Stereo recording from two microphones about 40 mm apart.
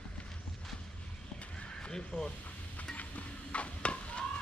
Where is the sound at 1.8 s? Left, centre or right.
Centre.